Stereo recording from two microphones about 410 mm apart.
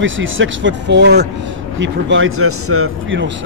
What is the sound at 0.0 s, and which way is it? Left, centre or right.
Speech, right.